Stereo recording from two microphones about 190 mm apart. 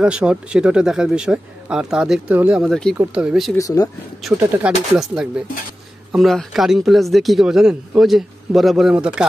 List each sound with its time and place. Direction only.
0.0 s speech: 5° right (ahead or behind)
3.5 s speech: 20° left (ahead or behind)
4.3 s speech: 5° right (ahead or behind)